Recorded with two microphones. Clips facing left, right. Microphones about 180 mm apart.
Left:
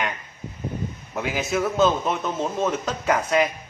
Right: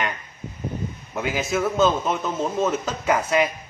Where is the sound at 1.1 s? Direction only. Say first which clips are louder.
Right 1 dB; centre (ahead or behind).